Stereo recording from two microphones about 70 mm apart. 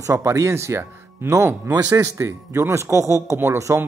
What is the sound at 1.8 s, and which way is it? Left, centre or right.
Speech, right.